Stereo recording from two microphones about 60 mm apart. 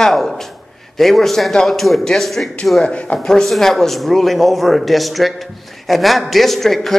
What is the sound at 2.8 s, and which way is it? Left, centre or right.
Speech, centre.